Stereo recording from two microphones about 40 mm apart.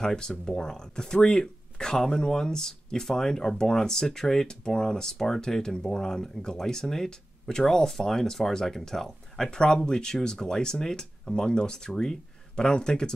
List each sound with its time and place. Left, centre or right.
0.0 s speech: centre